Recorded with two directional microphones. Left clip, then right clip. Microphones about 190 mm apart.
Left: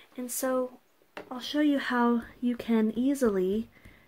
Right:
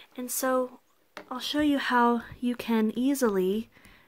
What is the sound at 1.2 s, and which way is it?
Speech, 35° right (ahead or behind).